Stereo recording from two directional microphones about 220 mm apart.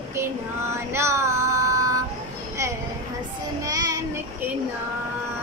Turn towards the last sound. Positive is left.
turn(degrees=-15)  # may be behind; listen again after turning